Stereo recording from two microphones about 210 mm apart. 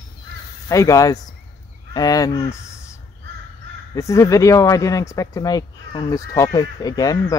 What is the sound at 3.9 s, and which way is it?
Speech, 15° left (ahead or behind).